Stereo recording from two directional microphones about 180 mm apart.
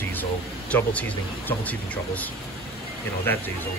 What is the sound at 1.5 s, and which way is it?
Speech, 10° left (ahead or behind).